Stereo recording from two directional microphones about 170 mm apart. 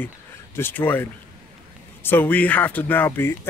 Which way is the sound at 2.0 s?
10° left (ahead or behind).